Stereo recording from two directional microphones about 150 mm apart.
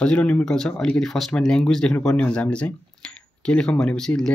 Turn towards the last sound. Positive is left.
turn(degrees=5)  # may be behind; listen again after turning